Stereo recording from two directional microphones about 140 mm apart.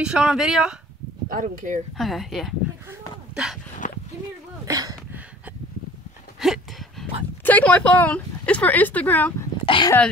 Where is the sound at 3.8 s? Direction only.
70° left (ahead or behind).